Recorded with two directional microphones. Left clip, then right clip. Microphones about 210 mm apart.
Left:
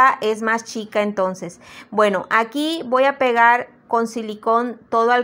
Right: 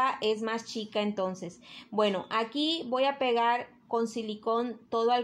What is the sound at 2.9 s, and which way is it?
A woman's voice, 20° left (ahead or behind).